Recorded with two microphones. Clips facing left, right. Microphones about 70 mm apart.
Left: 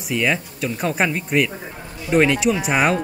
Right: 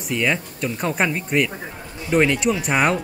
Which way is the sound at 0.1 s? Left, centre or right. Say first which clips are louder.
Left 1 dB; centre.